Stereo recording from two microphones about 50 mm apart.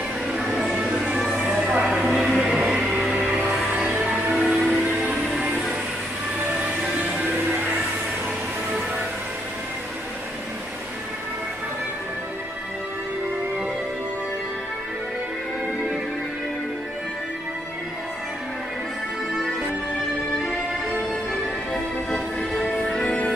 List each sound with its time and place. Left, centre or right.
0.3 s music: centre
2.7 s music: centre
4.3 s train: centre
6.5 s music: right
21.7 s music: centre